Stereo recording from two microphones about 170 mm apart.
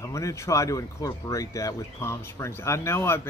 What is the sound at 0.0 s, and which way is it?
Speech, 20° left (ahead or behind).